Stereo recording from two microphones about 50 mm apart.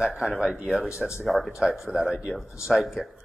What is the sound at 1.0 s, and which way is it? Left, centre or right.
Speech, centre.